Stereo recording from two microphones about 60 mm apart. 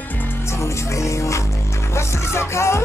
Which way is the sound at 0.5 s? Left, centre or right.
Left.